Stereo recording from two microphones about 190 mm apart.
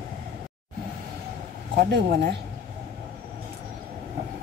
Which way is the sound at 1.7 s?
65° right (ahead or behind).